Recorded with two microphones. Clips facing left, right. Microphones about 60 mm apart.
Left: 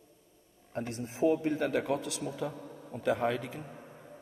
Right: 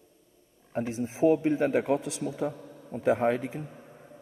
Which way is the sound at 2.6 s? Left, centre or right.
Left.